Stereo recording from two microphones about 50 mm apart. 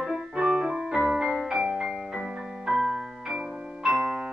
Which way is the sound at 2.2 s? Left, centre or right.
Centre.